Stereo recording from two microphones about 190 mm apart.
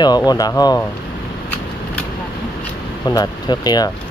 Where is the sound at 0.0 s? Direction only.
20° left (ahead or behind).